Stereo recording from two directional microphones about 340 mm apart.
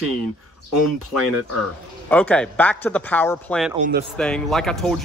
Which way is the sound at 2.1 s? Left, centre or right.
Centre.